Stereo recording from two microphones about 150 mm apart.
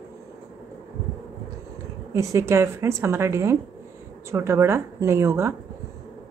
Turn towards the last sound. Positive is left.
turn(degrees=-20)  # may be behind; listen again after turning